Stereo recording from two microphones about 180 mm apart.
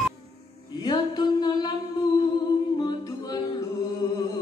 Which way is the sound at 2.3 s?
25° left (ahead or behind).